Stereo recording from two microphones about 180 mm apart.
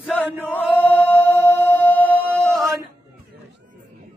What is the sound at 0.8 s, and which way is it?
Music, 5° left (ahead or behind).